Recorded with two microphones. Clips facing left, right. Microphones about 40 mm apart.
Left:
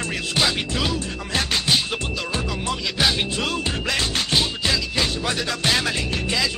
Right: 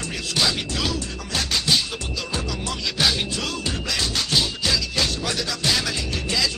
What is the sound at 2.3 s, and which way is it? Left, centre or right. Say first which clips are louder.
Music: left 1 dB; centre.